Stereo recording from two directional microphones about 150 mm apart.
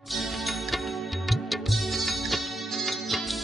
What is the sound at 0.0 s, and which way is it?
Music, centre (ahead or behind).